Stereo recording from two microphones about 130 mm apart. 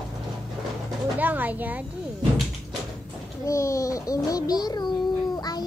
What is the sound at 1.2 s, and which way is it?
Speech, 15° right (ahead or behind).